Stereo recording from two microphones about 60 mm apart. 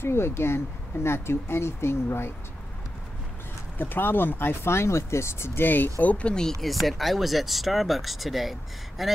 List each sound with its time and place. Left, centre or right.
0.0 s speech: left
3.7 s speech: left; by 6.5 s centre
6.6 s speech: centre